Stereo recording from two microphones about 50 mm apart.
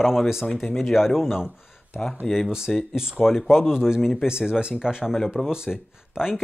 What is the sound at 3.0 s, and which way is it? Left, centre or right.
Speech, centre.